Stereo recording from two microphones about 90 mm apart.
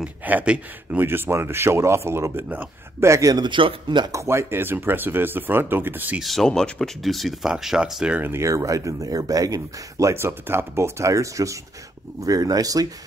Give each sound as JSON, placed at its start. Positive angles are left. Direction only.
{"t": 0.0, "sound": "speech", "side_deg": -20}
{"t": 3.4, "sound": "speech", "side_deg": -65}
{"t": 4.1, "sound": "speech", "side_deg": -30}
{"t": 6.2, "sound": "speech", "side_deg": 5}
{"t": 8.2, "sound": "speech", "side_deg": -30}